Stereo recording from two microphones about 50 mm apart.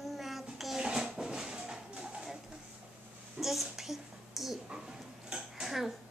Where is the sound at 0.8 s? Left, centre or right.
Centre.